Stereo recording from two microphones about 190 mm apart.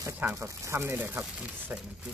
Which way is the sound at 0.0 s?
15° right (ahead or behind).